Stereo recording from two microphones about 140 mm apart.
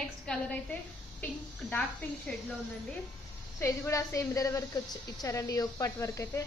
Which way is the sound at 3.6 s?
20° left (ahead or behind).